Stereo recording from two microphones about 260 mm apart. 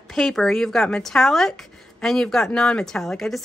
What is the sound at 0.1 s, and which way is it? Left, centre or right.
Speech, centre.